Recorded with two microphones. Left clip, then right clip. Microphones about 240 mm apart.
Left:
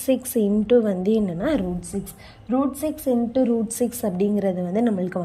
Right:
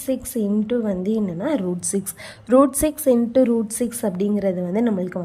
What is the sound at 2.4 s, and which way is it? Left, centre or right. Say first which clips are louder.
Speech: right 8 dB; centre.